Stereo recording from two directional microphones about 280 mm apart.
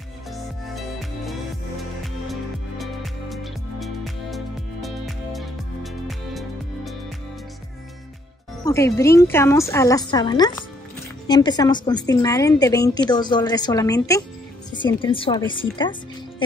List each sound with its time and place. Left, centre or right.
0.7 s music: centre
8.6 s a woman's voice: centre